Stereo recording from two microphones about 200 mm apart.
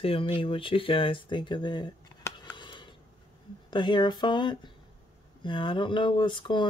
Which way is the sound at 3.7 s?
25° left (ahead or behind).